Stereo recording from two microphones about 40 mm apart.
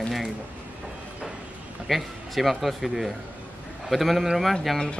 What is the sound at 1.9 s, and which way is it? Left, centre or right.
Speech, centre.